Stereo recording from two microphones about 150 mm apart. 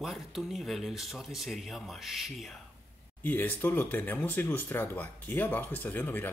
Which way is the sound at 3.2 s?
10° left (ahead or behind).